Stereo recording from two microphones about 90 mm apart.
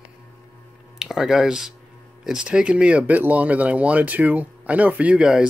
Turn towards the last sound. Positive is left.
turn(degrees=-10)  # may be behind; listen again after turning